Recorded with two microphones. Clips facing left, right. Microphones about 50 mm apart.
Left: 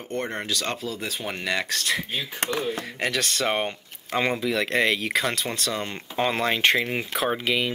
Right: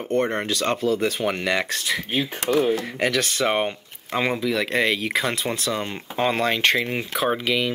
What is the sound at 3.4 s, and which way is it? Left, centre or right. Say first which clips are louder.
Speech: right 4 dB; centre.